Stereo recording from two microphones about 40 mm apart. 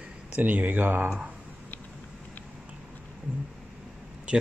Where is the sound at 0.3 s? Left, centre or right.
Right.